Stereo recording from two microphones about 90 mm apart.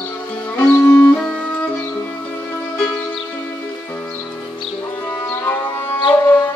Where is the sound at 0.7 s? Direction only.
30° left (ahead or behind).